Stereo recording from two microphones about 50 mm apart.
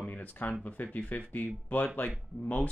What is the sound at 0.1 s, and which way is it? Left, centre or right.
Speech, left.